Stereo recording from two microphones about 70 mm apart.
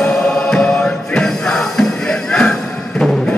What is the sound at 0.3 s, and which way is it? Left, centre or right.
Music, centre.